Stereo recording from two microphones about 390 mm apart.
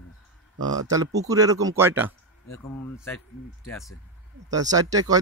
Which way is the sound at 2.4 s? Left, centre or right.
Centre.